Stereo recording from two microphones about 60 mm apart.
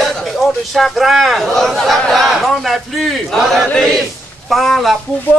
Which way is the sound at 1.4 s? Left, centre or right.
Centre.